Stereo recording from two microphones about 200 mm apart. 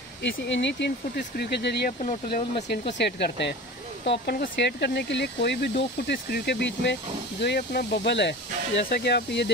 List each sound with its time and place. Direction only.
0.2 s speech: 60° left (ahead or behind)